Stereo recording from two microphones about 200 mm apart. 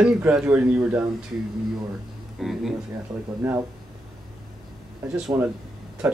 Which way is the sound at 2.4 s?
Centre (ahead or behind).